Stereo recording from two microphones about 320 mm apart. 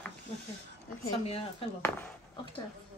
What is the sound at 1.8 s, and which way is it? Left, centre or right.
Speech, centre.